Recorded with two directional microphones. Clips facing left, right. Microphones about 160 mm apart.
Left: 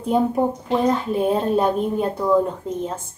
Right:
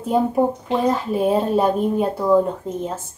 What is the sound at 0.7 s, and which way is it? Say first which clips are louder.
Speech: even; 5° right (ahead or behind).